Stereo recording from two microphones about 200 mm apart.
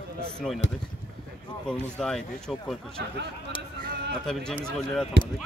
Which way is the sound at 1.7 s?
5° left (ahead or behind).